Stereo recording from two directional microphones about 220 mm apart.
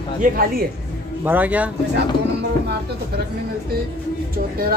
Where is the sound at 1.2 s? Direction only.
10° right (ahead or behind).